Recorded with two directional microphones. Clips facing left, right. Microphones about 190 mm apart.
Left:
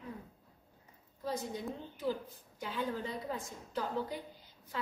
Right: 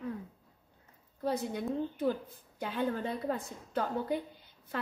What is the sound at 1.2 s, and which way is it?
A woman's voice, 60° right (ahead or behind).